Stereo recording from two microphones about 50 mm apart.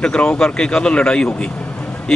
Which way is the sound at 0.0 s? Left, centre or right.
Centre.